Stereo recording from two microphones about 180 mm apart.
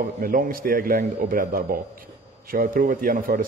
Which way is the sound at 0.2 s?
50° right (ahead or behind).